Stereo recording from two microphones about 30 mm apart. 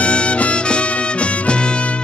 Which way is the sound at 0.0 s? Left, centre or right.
Left.